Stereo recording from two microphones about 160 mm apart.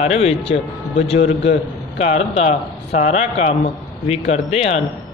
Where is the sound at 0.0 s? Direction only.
40° left (ahead or behind).